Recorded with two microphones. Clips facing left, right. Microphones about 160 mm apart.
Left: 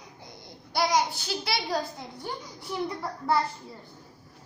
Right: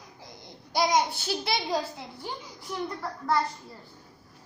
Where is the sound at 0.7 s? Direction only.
15° right (ahead or behind).